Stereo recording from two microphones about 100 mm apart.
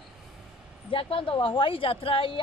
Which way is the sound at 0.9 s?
65° left (ahead or behind).